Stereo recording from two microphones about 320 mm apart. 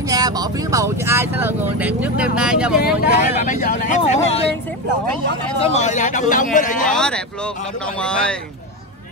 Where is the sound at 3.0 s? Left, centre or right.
Left.